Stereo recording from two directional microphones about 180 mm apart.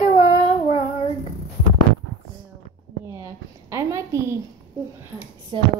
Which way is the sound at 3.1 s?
15° right (ahead or behind).